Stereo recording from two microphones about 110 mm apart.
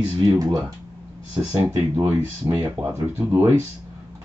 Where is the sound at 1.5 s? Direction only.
20° right (ahead or behind).